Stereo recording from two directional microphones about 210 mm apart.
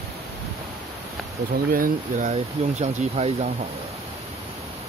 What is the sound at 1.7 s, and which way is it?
Speech, 40° right (ahead or behind).